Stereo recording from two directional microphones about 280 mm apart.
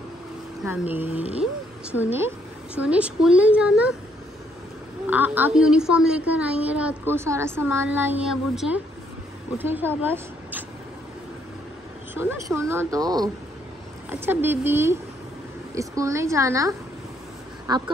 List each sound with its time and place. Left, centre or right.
0.7 s a woman's voice: centre
5.0 s a woman's voice: centre
12.1 s speech: centre